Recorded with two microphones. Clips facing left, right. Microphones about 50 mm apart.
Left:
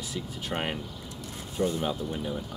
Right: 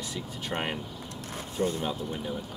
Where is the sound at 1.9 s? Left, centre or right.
Centre.